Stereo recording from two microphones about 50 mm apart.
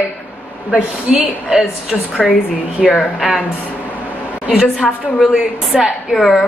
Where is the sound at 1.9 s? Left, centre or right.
Centre.